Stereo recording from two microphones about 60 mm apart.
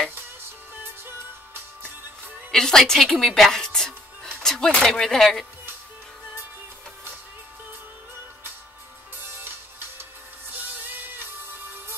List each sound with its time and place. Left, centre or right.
2.5 s speech: centre
9.2 s music: right